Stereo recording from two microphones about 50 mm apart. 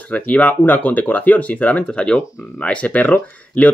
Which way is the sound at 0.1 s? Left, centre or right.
Left.